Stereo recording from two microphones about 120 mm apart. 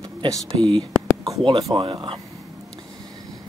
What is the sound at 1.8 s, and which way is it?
Speech, 45° right (ahead or behind).